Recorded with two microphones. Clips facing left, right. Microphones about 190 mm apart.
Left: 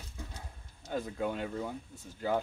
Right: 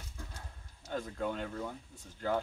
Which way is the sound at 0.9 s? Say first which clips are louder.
Left 2 dB; 10° left (ahead or behind).